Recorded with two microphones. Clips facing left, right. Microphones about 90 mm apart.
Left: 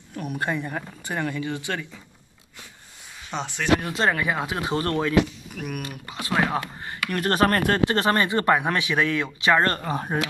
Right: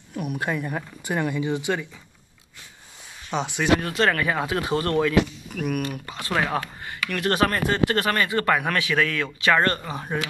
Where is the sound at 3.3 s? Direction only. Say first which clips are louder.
Right 4 dB; 5° right (ahead or behind).